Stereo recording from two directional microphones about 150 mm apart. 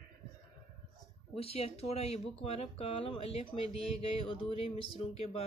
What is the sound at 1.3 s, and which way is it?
Speech, 40° left (ahead or behind).